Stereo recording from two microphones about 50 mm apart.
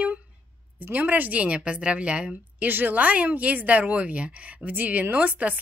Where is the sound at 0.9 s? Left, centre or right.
Right.